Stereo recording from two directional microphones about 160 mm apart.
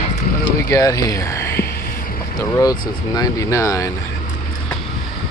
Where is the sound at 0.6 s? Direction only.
20° left (ahead or behind).